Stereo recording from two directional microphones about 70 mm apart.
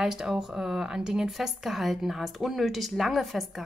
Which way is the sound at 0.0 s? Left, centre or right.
Centre.